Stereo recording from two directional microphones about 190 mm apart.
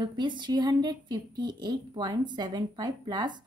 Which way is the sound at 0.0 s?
25° right (ahead or behind).